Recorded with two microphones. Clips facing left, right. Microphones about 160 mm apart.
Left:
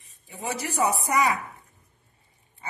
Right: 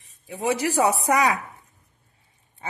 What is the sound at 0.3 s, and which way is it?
A woman's voice, 90° right.